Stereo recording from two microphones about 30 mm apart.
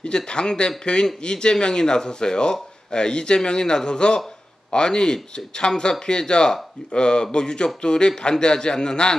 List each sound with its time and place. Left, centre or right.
0.0 s speech: left